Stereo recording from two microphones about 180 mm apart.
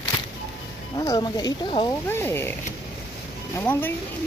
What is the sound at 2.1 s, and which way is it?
Speech, 15° left (ahead or behind).